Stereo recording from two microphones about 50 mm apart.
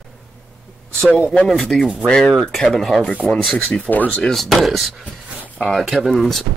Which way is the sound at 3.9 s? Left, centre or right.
Left.